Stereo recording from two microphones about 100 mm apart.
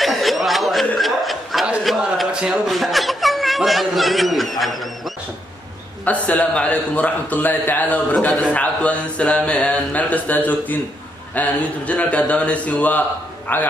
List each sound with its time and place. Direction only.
0.0 s chuckle: centre (ahead or behind)
6.0 s a man's voice: 15° left (ahead or behind)